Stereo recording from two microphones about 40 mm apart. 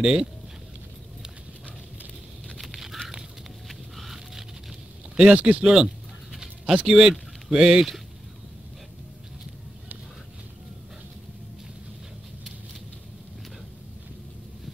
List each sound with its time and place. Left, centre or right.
0.0 s speech: centre
2.6 s a sound: centre
5.3 s speech: right
5.6 s speech: centre
6.3 s a sound: centre
6.9 s speech: centre